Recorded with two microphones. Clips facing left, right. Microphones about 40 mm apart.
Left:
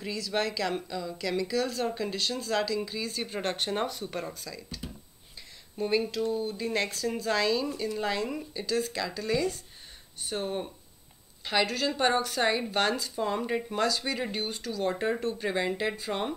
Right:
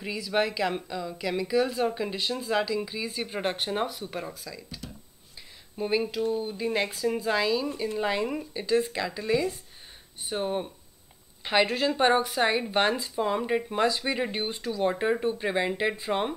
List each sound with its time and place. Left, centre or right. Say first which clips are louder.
0.0 s speech: right 3 dB; centre
5.8 s speech: right 1 dB; centre
11.4 s speech: right 3 dB; right